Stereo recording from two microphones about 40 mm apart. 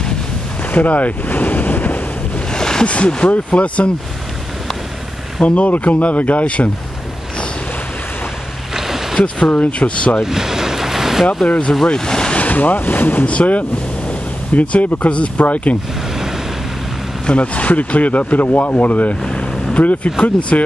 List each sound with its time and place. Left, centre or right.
0.7 s boat: left
2.5 s a sound: centre
2.9 s speech: left
5.4 s speech: left
8.7 s boat: centre
9.5 s speech: left
10.2 s a sound: centre
11.4 s speech: left
12.4 s speech: left
13.2 s speech: left
17.3 s speech: left
19.2 s vehicle: left
19.8 s speech: left